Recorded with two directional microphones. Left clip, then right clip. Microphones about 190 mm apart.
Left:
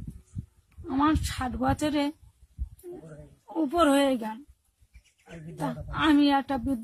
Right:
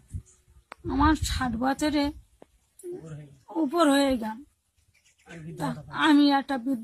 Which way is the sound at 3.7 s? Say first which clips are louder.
Even; 20° left (ahead or behind).